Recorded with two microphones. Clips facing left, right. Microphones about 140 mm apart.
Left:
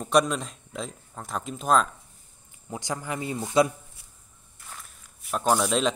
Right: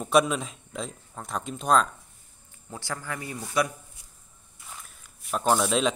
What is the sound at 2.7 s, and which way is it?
Speech, 20° left (ahead or behind).